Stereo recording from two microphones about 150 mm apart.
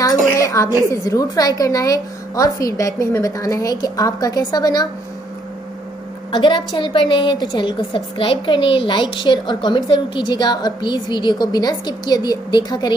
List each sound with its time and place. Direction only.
0.4 s a woman's voice: 20° left (ahead or behind)
6.3 s a woman's voice: 30° left (ahead or behind)